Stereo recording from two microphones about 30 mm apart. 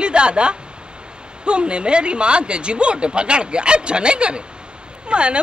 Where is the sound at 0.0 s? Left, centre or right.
Right.